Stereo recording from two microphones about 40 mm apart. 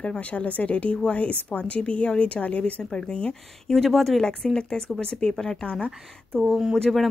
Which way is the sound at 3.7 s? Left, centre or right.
Centre.